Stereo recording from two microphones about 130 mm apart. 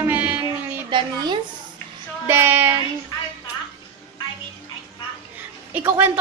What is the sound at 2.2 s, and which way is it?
Speech, 15° right (ahead or behind).